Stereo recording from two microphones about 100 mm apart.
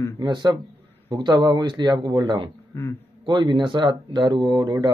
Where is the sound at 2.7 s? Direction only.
25° left (ahead or behind).